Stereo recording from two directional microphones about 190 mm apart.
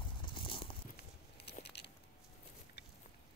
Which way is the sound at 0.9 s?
60° left (ahead or behind).